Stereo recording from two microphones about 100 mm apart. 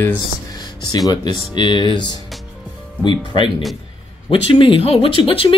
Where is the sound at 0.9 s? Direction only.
45° left (ahead or behind).